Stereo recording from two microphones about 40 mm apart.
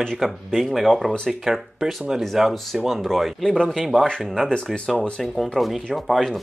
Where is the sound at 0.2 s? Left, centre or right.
Centre.